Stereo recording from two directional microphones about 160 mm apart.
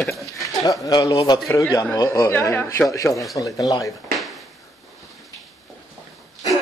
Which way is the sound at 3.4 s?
20° left (ahead or behind).